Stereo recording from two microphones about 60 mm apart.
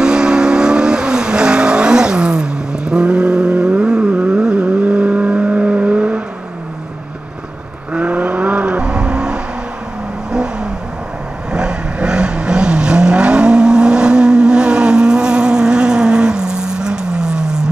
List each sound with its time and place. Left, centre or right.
0.0 s vehicle: centre
7.9 s vehicle: right